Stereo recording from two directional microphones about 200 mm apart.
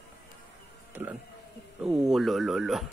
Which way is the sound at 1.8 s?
Centre (ahead or behind).